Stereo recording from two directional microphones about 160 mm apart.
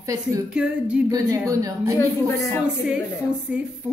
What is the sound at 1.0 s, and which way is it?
Speech, 20° right (ahead or behind).